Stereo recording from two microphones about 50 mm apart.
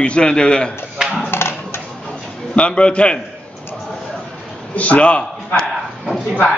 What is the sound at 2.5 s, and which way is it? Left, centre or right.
Speech, left.